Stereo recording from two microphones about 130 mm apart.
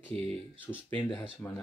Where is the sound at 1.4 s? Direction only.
15° left (ahead or behind).